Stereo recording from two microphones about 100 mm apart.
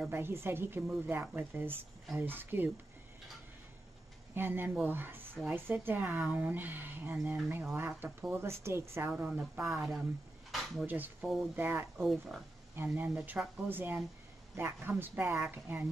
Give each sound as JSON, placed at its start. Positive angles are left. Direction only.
{"t": 0.1, "sound": "speech", "side_deg": -25}
{"t": 4.4, "sound": "speech", "side_deg": -20}
{"t": 9.1, "sound": "speech", "side_deg": -10}
{"t": 10.5, "sound": "a sound", "side_deg": 0}
{"t": 10.9, "sound": "speech", "side_deg": -15}
{"t": 12.0, "sound": "speech", "side_deg": 0}
{"t": 12.7, "sound": "speech", "side_deg": -15}